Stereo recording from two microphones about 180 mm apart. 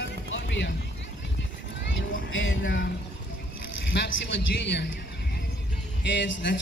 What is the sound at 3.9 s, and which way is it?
Vehicle, 75° left (ahead or behind).